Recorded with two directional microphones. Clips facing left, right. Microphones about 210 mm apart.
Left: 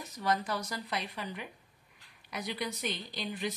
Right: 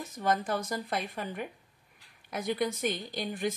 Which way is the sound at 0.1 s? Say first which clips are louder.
Right 3 dB; 50° right (ahead or behind).